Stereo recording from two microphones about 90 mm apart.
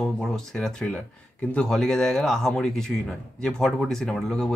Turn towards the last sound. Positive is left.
turn(degrees=5)  # may be behind; listen again after turning